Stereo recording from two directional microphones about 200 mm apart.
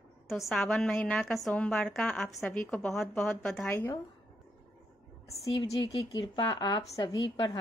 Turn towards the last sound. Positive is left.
turn(degrees=20)  # may be behind; listen again after turning